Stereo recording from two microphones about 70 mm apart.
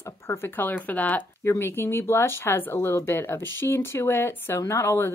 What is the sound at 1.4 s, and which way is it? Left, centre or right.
Speech, left.